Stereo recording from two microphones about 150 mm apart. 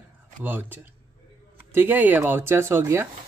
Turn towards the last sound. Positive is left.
turn(degrees=-15)  # may be behind; listen again after turning